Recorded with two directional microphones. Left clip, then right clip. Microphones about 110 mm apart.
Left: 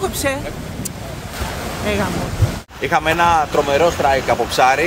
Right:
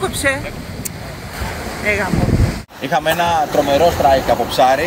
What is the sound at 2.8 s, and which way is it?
Speech, 30° left (ahead or behind).